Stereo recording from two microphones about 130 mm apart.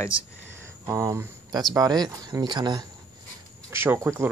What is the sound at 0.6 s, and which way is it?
Speech, 20° right (ahead or behind).